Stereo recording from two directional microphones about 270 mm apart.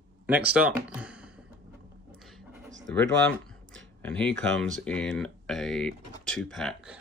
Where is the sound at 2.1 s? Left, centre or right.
Centre.